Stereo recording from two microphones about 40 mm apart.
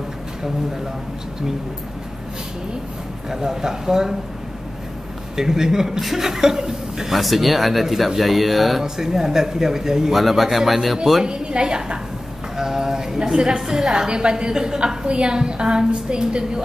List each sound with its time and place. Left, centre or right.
3.3 s a woman's voice: centre
5.3 s a woman's voice: centre
7.2 s speech: centre
8.8 s a woman's voice: centre
10.1 s speech: centre
11.2 s a woman's voice: right